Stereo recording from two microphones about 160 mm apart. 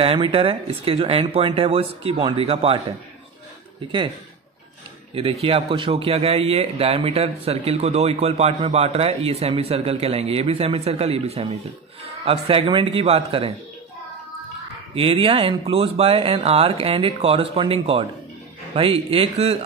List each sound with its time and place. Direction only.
0.0 s a man's voice: 35° right (ahead or behind)
5.1 s a man's voice: 35° right (ahead or behind)
15.0 s a man's voice: 35° right (ahead or behind)